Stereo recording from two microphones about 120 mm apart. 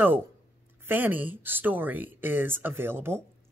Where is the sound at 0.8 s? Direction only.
15° right (ahead or behind).